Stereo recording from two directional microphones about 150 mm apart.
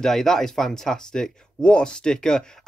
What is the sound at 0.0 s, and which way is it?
Speech, centre (ahead or behind).